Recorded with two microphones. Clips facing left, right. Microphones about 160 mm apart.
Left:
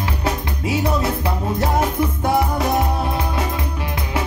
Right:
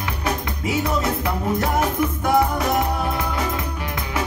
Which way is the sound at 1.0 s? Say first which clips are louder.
Left 1 dB; 30° left (ahead or behind).